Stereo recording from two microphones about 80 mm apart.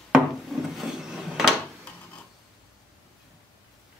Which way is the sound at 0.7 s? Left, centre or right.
Centre.